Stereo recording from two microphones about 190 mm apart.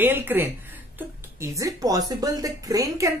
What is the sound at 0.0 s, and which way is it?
Speech, 10° right (ahead or behind).